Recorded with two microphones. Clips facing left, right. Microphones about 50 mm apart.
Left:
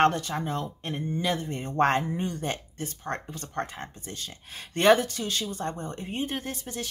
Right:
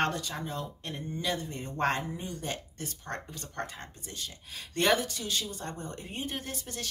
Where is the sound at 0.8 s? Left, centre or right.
Left.